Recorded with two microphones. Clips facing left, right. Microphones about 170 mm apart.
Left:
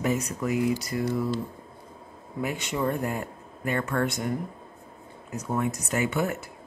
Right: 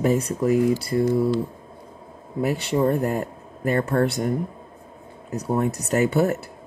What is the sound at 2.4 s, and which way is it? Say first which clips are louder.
Speech: right 7 dB; 35° right (ahead or behind).